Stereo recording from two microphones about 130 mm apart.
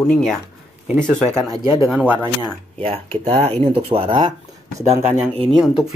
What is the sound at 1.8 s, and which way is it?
Speech, 5° right (ahead or behind).